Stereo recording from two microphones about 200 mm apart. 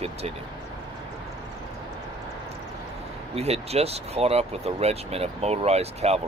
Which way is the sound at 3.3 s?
30° right (ahead or behind).